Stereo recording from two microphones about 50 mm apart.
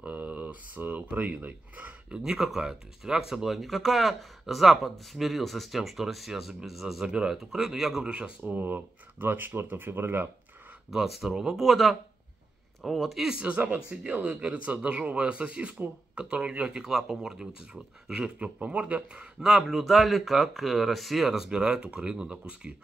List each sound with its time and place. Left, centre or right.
0.0 s speech: right
2.0 s speech: centre
8.0 s speech: right
10.9 s speech: centre
13.4 s speech: right
16.8 s speech: centre
18.4 s speech: right
19.4 s speech: centre